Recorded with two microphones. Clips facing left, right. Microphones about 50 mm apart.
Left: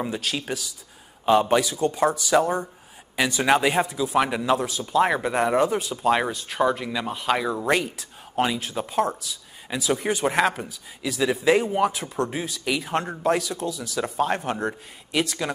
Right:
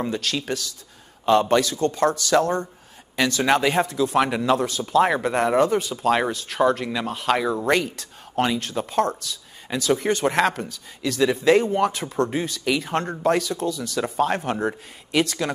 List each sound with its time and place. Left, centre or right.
0.0 s speech: centre